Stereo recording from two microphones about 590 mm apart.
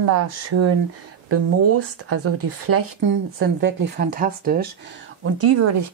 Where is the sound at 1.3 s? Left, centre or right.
Right.